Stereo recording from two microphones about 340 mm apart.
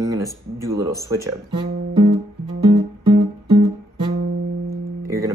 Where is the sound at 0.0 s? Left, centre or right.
Centre.